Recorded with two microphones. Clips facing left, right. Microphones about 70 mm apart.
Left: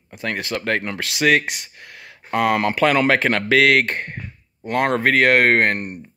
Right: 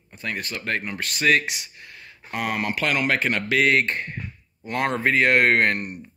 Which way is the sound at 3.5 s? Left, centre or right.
Left.